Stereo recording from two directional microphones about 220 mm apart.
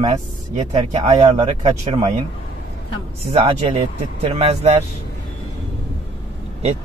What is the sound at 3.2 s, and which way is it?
Speech, 30° right (ahead or behind).